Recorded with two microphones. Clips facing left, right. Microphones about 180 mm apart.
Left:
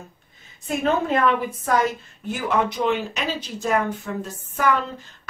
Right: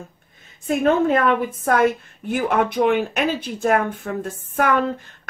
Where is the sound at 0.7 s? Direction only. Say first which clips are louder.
Right 5 dB; 50° right (ahead or behind).